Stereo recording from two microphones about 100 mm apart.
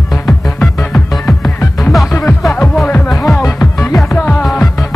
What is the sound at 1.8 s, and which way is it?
Music, centre (ahead or behind).